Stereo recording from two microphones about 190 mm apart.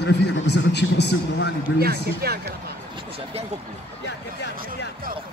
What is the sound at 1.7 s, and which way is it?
Speech, 55° right (ahead or behind).